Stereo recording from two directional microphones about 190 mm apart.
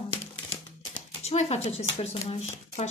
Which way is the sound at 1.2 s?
35° left (ahead or behind).